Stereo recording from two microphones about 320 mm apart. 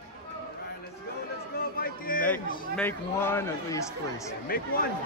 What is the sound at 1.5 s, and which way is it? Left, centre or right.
Music, left.